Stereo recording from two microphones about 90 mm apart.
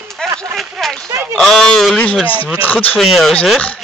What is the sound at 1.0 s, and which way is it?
Speech, 25° right (ahead or behind).